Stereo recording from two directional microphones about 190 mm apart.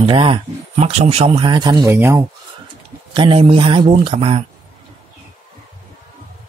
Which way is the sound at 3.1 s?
25° right (ahead or behind).